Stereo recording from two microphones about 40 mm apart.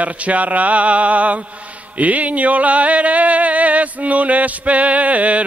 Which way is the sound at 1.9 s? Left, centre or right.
Right.